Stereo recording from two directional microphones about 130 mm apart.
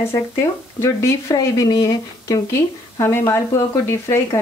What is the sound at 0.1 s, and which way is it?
Speech, 20° left (ahead or behind).